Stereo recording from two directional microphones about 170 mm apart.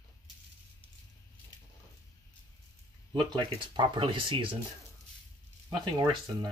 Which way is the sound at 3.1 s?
25° right (ahead or behind).